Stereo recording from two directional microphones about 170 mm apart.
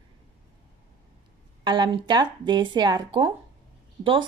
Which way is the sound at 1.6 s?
25° right (ahead or behind).